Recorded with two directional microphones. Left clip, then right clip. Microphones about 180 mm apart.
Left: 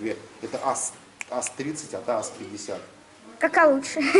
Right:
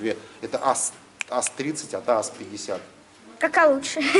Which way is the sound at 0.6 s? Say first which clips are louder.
Right 4 dB; 15° right (ahead or behind).